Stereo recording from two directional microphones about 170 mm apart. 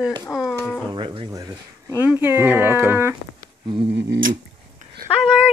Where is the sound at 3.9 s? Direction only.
90° right.